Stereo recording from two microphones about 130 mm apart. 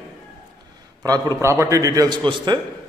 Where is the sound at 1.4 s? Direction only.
20° right (ahead or behind).